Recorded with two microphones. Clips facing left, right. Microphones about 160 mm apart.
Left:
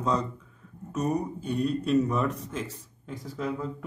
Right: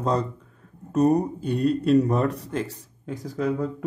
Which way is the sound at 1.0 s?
35° right (ahead or behind).